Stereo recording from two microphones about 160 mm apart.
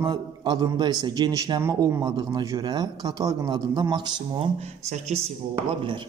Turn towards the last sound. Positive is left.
turn(degrees=-30)  # may be behind; listen again after turning